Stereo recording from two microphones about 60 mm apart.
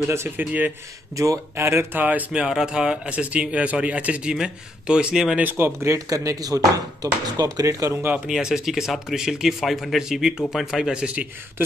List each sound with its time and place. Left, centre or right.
0.0 s speech: right
0.4 s speech: right
1.1 s speech: right
2.0 s speech: right
2.3 s speech: centre
5.4 s speech: right
5.7 s speech: right
5.9 s speech: right
8.3 s speech: centre